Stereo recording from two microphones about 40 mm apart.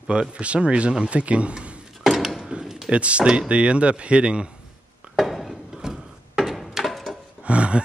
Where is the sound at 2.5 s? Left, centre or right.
Right.